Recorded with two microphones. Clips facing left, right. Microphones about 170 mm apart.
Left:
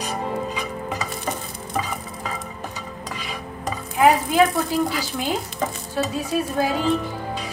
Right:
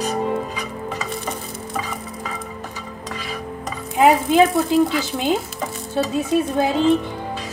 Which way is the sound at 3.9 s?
20° right (ahead or behind).